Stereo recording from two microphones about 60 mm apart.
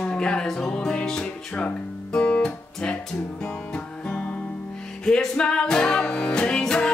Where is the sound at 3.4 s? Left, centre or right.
Left.